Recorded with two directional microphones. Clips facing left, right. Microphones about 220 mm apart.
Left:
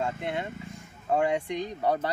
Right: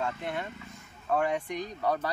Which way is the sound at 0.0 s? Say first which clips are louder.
Left 2 dB; 20° left (ahead or behind).